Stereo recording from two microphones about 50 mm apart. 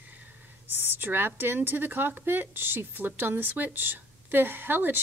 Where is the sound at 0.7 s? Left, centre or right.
Right.